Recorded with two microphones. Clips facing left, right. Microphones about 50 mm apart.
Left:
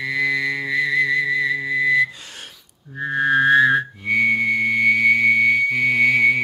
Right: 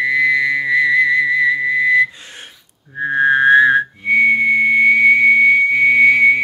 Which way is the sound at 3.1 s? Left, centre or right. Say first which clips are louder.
Right 4 dB; centre.